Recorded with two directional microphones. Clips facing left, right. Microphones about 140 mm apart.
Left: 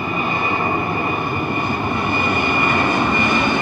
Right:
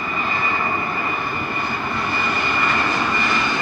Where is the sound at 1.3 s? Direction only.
50° left (ahead or behind).